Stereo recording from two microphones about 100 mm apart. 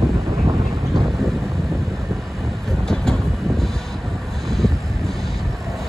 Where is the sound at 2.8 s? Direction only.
5° left (ahead or behind).